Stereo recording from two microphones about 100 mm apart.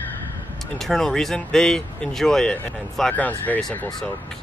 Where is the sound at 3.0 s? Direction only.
15° left (ahead or behind).